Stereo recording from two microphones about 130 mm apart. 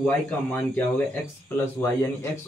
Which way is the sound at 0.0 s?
15° left (ahead or behind).